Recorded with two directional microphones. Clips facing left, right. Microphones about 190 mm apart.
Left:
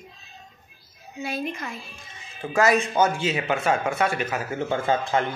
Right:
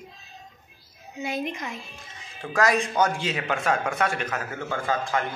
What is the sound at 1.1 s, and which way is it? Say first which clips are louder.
Speech: even; 20° right (ahead or behind).